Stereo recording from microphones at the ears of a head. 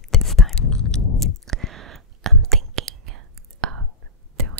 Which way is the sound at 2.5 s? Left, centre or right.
Right.